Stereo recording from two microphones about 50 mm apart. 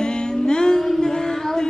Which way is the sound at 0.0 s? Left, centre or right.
Centre.